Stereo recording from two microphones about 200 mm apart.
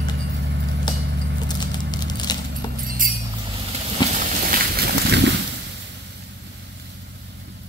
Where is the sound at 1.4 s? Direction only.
20° left (ahead or behind).